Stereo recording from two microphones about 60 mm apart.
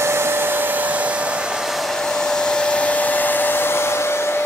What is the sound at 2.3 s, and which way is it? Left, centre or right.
Hair dryer, centre.